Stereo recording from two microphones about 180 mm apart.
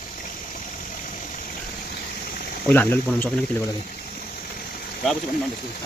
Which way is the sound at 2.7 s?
10° left (ahead or behind).